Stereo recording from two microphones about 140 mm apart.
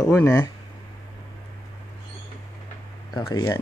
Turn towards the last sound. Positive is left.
turn(degrees=20)  # may be behind; listen again after turning